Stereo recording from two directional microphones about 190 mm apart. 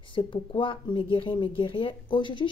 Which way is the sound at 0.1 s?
25° left (ahead or behind).